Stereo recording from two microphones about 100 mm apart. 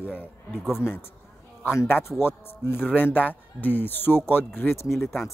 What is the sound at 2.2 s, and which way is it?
A man's voice, 25° left (ahead or behind).